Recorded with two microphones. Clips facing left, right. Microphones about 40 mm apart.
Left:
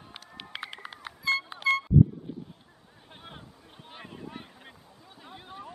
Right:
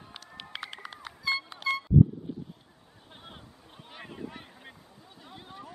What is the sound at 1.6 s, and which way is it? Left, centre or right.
Vehicle, centre.